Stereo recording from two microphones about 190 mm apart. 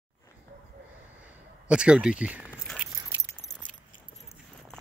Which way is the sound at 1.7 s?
5° right (ahead or behind).